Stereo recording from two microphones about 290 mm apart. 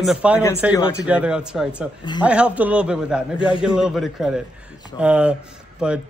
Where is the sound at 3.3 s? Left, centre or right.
Centre.